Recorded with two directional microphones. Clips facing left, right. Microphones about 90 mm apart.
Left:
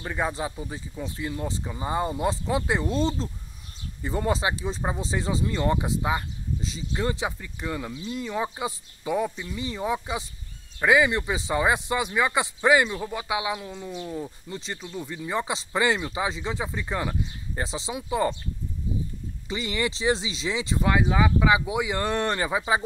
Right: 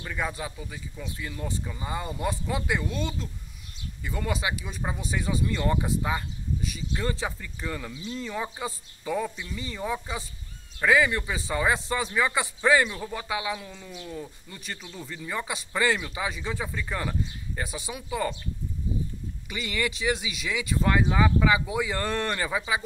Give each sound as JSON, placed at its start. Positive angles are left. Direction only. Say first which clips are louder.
{"t": 0.0, "sound": "speech", "louder": "left 4 dB", "side_deg": 25}
{"t": 19.5, "sound": "speech", "louder": "left 2 dB", "side_deg": 25}
{"t": 20.8, "sound": "speech", "louder": "left 1 dB", "side_deg": 10}